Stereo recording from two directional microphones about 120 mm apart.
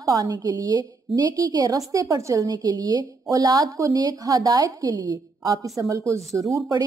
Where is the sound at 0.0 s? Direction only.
30° right (ahead or behind).